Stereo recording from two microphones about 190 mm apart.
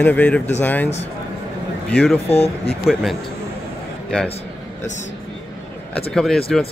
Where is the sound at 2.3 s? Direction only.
35° left (ahead or behind).